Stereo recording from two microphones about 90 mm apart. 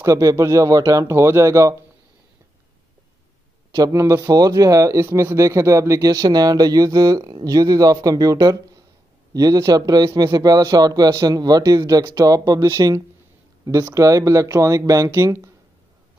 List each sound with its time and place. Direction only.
0.0 s speech: 35° right (ahead or behind)
3.7 s a man's voice: 40° right (ahead or behind)